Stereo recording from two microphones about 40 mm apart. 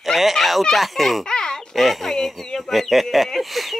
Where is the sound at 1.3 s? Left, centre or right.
Centre.